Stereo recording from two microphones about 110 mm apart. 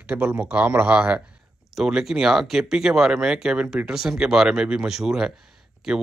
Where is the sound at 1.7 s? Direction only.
5° right (ahead or behind).